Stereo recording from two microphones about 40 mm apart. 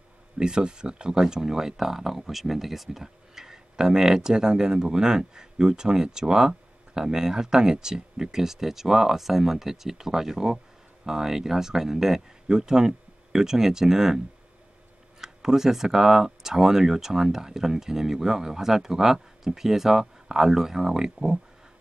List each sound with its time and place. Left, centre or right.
0.4 s speech: centre